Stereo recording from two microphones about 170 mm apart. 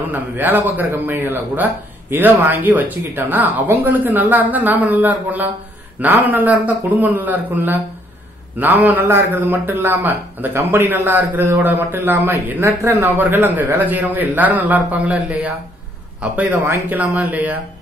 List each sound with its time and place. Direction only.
0.1 s a man's voice: 10° right (ahead or behind)